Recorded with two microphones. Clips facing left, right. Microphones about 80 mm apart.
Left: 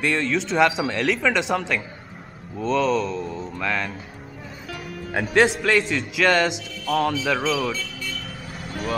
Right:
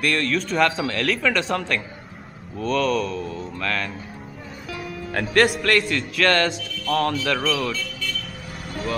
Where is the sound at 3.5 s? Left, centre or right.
Centre.